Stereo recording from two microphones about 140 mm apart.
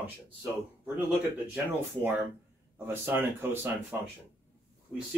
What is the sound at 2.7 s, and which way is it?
Speech, 15° right (ahead or behind).